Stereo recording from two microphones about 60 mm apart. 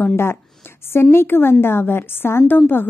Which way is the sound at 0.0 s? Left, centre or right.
Left.